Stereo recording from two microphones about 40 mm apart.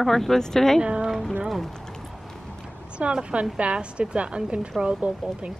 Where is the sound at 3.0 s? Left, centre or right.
Right.